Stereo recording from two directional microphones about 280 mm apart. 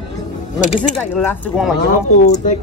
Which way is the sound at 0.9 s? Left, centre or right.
Centre.